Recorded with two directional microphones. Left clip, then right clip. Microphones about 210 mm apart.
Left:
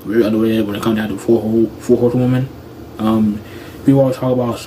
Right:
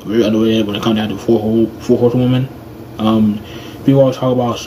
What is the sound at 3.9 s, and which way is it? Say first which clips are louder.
Speech: right 2 dB; 5° left (ahead or behind).